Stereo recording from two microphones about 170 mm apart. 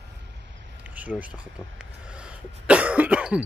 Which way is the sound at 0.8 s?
10° right (ahead or behind).